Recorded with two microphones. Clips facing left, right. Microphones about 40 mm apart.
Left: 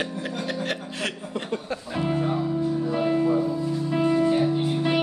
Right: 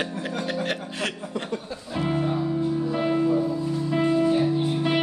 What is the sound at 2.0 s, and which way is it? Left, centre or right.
Music, centre.